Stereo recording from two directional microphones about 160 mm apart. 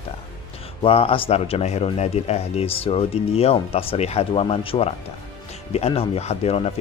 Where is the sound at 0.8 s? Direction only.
35° left (ahead or behind).